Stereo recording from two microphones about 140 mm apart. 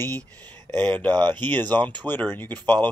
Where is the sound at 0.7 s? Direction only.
15° left (ahead or behind).